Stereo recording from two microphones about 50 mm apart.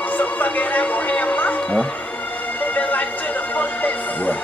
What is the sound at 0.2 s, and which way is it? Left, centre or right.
Music, left.